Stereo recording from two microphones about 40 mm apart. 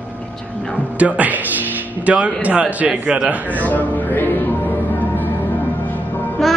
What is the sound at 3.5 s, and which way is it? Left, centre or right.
Speech, left.